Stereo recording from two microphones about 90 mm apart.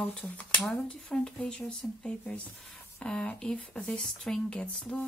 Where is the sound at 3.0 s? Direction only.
10° left (ahead or behind).